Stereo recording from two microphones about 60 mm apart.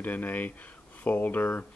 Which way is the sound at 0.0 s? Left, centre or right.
Left.